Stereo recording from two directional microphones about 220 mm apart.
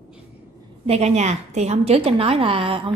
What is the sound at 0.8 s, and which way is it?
A woman's voice, 30° right (ahead or behind).